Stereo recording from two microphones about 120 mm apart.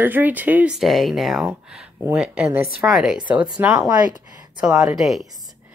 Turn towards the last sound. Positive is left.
turn(degrees=0)  # may be behind; listen again after turning